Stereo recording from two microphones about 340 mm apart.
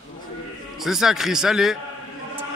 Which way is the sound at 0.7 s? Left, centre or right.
Centre.